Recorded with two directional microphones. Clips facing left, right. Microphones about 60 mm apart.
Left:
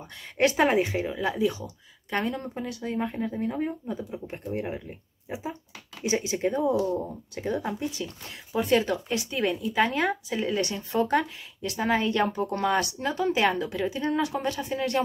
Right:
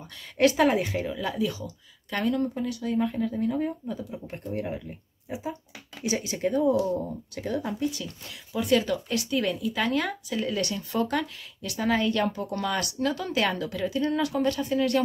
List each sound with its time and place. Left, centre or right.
0.4 s speech: left